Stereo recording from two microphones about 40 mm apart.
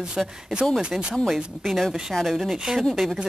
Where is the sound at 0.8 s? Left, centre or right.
Right.